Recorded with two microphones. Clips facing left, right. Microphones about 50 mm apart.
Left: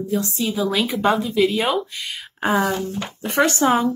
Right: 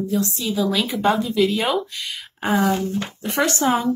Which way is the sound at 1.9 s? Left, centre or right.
Centre.